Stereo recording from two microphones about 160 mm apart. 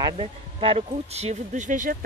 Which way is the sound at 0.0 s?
35° right (ahead or behind).